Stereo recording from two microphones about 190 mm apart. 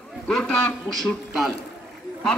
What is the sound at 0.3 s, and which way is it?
A man's voice, 5° left (ahead or behind).